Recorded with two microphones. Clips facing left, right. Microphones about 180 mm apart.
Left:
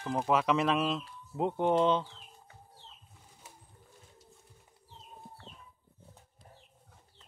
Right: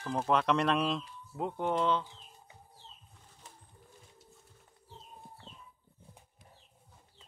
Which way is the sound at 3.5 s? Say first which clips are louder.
Even; 5° left (ahead or behind).